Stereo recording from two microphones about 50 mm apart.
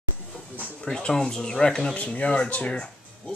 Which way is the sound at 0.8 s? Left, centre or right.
Centre.